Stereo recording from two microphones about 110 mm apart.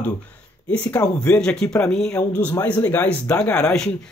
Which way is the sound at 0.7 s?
15° left (ahead or behind).